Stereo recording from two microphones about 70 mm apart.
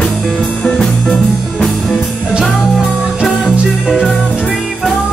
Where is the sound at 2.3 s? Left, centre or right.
Centre.